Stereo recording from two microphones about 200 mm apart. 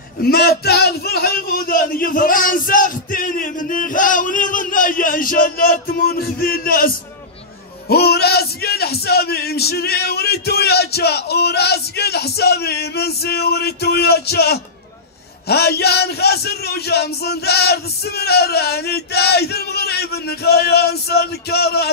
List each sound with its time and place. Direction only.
0.2 s a man's voice: 50° left (ahead or behind)
7.9 s a man's voice: 55° left (ahead or behind)